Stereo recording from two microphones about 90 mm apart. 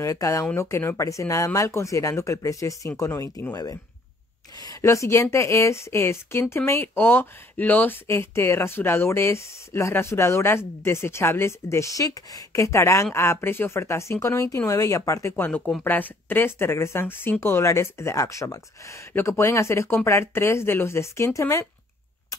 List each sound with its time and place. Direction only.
0.0 s speech: 35° left (ahead or behind)
4.8 s speech: 30° left (ahead or behind)
15.3 s speech: 20° left (ahead or behind); by 21.6 s 35° left (ahead or behind)